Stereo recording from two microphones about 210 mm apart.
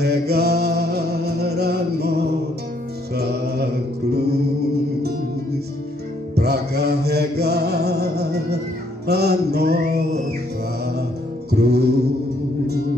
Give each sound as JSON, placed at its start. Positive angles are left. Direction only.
{"t": 0.0, "sound": "music", "side_deg": -50}
{"t": 6.3, "sound": "music", "side_deg": -50}
{"t": 9.0, "sound": "mantra", "side_deg": -50}
{"t": 11.5, "sound": "music", "side_deg": -50}